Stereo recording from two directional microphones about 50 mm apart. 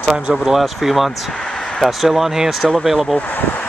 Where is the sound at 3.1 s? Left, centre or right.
Left.